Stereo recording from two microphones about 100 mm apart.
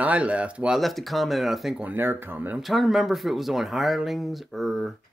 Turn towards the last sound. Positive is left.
turn(degrees=0)  # may be behind; listen again after turning